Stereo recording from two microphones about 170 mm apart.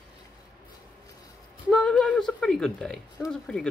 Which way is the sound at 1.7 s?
5° left (ahead or behind).